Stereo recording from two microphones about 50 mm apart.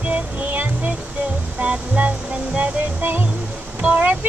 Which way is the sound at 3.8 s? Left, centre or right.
Right.